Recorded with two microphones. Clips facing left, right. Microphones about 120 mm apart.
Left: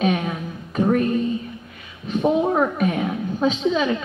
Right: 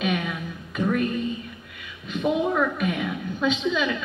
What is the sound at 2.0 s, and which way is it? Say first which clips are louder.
A woman's voice: left 4 dB; 35° left (ahead or behind).